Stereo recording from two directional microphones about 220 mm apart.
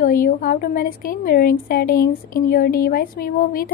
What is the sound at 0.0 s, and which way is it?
A woman's voice, 40° left (ahead or behind).